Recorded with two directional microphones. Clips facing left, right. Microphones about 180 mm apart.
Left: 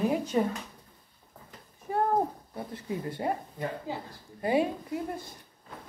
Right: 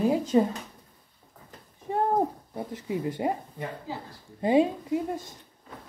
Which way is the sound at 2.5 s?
20° right (ahead or behind).